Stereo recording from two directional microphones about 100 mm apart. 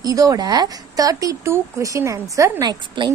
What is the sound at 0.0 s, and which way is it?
A woman's voice, 35° right (ahead or behind).